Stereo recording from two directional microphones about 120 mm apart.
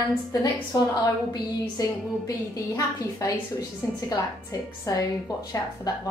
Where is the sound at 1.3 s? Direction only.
30° left (ahead or behind).